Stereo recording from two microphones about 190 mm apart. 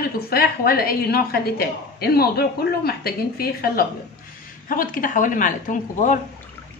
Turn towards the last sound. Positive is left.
turn(degrees=45)  # may be behind; listen again after turning